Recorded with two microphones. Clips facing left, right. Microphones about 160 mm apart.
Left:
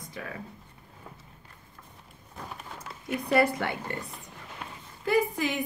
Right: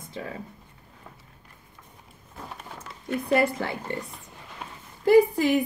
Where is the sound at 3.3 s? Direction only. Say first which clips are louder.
Right 1 dB; 25° right (ahead or behind).